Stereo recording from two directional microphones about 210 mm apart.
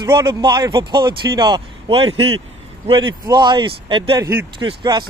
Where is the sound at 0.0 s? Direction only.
20° right (ahead or behind).